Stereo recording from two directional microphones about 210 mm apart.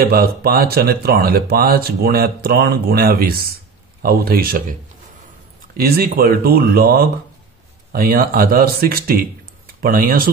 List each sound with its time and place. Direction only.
0.0 s speech: 45° right (ahead or behind)
5.8 s speech: 45° right (ahead or behind)